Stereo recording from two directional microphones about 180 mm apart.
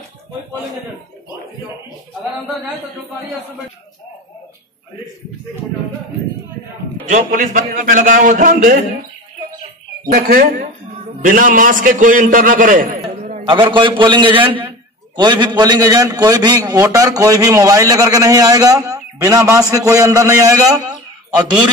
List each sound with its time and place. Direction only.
7.1 s a man's voice: 45° right (ahead or behind)
10.1 s a man's voice: 55° right (ahead or behind)
13.5 s a man's voice: 25° right (ahead or behind)